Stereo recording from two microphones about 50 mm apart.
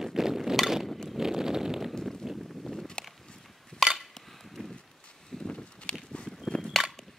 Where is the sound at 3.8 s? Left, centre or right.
Centre.